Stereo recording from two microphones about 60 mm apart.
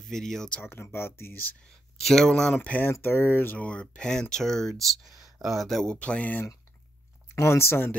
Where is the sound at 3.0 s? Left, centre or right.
Left.